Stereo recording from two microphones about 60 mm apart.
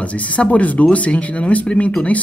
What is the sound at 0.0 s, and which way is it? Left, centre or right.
Speech, left.